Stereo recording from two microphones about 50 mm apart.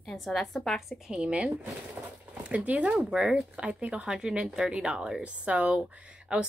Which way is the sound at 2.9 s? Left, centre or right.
Centre.